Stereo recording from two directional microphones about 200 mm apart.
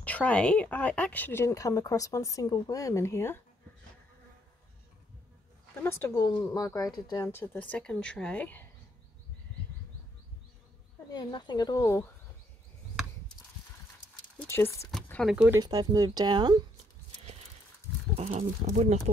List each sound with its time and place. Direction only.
0.0 s a woman's voice: 5° left (ahead or behind)
5.8 s a woman's voice: 10° left (ahead or behind)
11.1 s speech: 20° left (ahead or behind)
14.5 s a woman's voice: 10° left (ahead or behind)
14.9 s a sound: 5° left (ahead or behind)
15.3 s speech: 10° right (ahead or behind)
15.6 s speech: 20° right (ahead or behind)
18.1 s speech: 35° right (ahead or behind)